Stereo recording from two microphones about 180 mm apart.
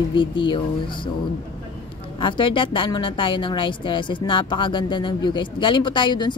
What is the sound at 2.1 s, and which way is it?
A woman's voice, 30° left (ahead or behind).